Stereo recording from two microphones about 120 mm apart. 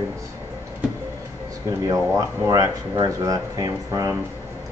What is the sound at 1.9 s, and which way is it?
Speech, 30° right (ahead or behind).